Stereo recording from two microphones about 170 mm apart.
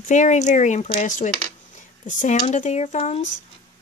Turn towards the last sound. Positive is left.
turn(degrees=40)  # may be behind; listen again after turning